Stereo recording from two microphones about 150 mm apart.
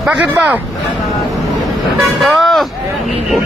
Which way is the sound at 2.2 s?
Centre (ahead or behind).